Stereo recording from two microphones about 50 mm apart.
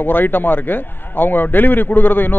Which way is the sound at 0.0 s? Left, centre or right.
Left.